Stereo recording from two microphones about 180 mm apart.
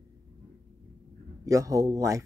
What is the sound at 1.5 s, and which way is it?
Speech, 20° right (ahead or behind).